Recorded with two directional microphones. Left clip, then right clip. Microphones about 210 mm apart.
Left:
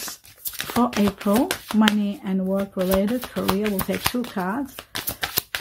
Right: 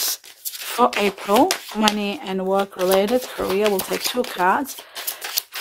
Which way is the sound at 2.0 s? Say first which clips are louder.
Right 4 dB; 30° right (ahead or behind).